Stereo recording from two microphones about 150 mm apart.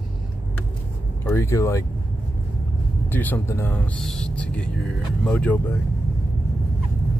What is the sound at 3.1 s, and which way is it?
Speech, 15° left (ahead or behind).